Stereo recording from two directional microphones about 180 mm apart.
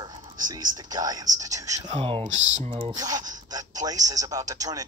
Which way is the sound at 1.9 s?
30° right (ahead or behind).